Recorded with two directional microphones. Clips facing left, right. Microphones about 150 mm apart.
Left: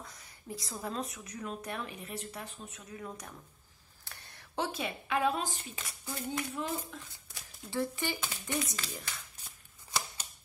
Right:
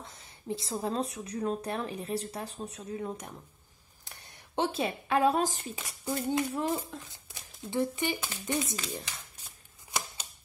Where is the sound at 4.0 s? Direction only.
20° right (ahead or behind); by 5.6 s 40° right (ahead or behind).